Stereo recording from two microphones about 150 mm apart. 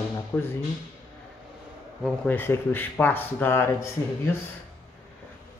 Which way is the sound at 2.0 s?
10° left (ahead or behind).